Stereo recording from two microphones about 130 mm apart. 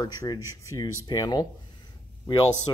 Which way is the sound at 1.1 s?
35° left (ahead or behind).